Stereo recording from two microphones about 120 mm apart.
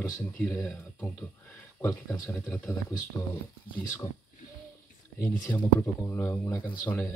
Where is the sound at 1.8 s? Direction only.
20° left (ahead or behind).